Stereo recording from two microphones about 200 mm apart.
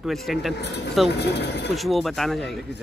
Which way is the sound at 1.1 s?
55° left (ahead or behind).